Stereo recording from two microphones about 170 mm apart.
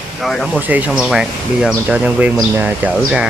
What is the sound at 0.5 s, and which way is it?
Speech, 10° right (ahead or behind).